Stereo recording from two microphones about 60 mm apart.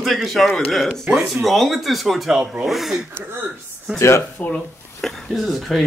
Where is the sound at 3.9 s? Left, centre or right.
Left.